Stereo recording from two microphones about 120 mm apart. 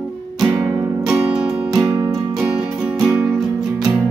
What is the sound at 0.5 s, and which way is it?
Music, 25° right (ahead or behind).